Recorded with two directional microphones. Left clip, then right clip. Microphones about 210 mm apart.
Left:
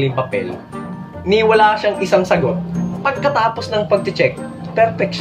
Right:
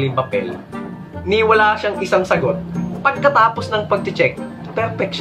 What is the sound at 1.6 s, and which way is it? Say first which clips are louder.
Speech: left 2 dB; 10° right (ahead or behind).